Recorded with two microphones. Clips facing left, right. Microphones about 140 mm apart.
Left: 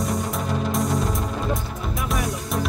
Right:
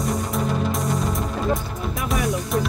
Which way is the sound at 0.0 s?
Centre (ahead or behind).